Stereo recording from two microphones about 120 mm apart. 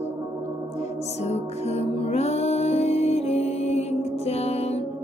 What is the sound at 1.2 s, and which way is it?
Music, 65° left (ahead or behind).